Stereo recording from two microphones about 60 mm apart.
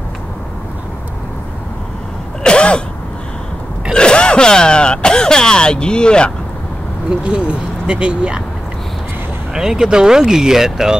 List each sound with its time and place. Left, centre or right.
2.4 s sneeze: centre
3.9 s a sound: centre
7.1 s speech: centre
9.5 s speech: centre